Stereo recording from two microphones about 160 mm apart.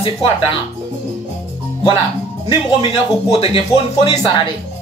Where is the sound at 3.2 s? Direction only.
35° left (ahead or behind).